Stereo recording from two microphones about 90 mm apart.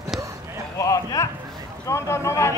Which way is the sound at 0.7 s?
40° left (ahead or behind).